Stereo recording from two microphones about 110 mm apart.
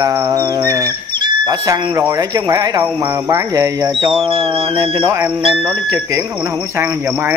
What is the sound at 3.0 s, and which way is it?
Speech, 25° right (ahead or behind).